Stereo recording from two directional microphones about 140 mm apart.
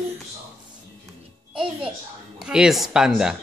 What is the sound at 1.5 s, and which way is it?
Music, 5° right (ahead or behind).